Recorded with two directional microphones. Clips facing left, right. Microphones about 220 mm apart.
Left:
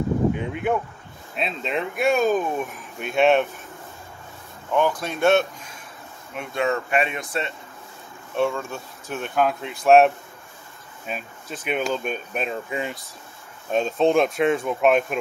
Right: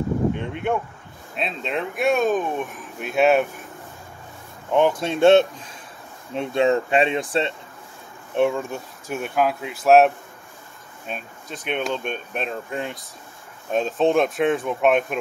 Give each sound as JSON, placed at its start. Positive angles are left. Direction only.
{"t": 0.3, "sound": "speech", "side_deg": 5}
{"t": 4.7, "sound": "speech", "side_deg": -25}
{"t": 8.4, "sound": "speech", "side_deg": -15}